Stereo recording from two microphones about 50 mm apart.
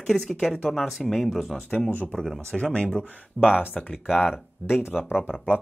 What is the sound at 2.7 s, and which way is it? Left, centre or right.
Speech, centre.